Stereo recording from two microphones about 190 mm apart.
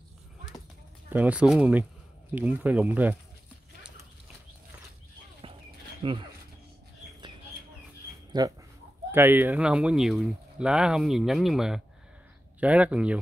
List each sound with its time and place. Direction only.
1.1 s speech: 5° right (ahead or behind)
5.4 s a sound: 30° right (ahead or behind)
6.0 s speech: 25° right (ahead or behind)
8.3 s speech: 20° right (ahead or behind)